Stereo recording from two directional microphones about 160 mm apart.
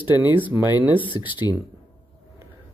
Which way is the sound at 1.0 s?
30° left (ahead or behind).